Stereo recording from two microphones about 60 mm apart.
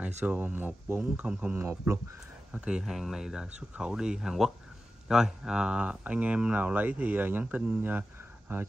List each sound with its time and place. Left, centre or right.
0.2 s speech: right
1.6 s speech: right
2.5 s speech: centre
2.8 s speech: centre; by 8.6 s right